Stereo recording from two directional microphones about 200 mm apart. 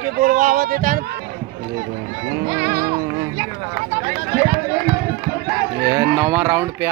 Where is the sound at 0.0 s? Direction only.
40° right (ahead or behind).